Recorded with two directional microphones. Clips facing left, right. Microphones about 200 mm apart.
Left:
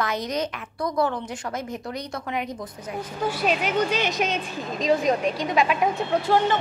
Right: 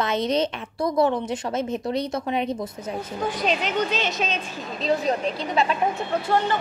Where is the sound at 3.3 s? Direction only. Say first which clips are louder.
Left 1 dB; 10° left (ahead or behind).